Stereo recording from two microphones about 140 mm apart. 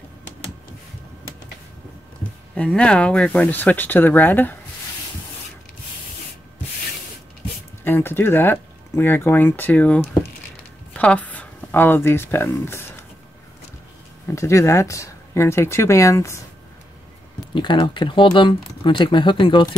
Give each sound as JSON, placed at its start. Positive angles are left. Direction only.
{"t": 2.5, "sound": "speech", "side_deg": 10}
{"t": 7.8, "sound": "speech", "side_deg": 15}
{"t": 14.2, "sound": "speech", "side_deg": 20}
{"t": 17.6, "sound": "speech", "side_deg": 35}